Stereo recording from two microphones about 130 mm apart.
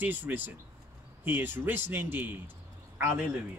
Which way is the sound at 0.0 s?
15° right (ahead or behind).